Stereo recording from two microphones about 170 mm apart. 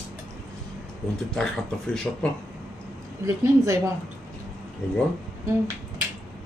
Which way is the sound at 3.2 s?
20° right (ahead or behind).